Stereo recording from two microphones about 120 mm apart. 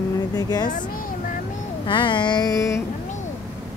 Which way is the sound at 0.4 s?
35° left (ahead or behind).